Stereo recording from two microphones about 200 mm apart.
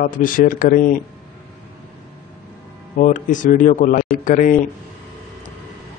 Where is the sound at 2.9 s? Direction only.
40° left (ahead or behind).